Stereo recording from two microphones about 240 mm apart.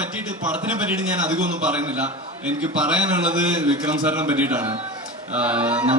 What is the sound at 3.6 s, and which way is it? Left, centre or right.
A man's voice, centre.